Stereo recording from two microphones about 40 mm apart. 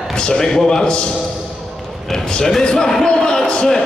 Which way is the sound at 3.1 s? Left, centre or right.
Centre.